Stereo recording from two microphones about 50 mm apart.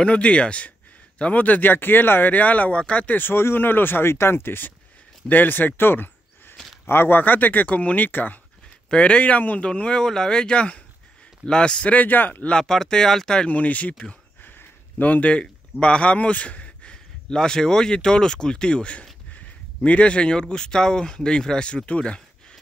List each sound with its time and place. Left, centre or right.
0.0 s speech: left
2.3 s speech: left
3.2 s speech: left
8.9 s speech: left
12.5 s speech: centre
13.5 s speech: left